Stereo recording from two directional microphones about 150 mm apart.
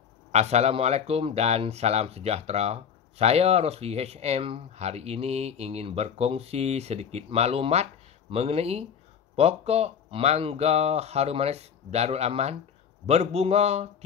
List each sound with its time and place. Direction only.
0.3 s speech: 45° right (ahead or behind)